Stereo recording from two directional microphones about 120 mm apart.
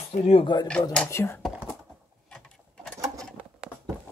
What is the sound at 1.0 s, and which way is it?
Speech, 20° left (ahead or behind).